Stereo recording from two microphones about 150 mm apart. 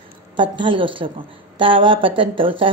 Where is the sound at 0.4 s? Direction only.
35° right (ahead or behind).